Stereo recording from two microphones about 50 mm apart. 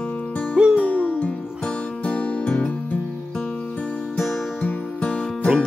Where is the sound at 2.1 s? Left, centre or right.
Left.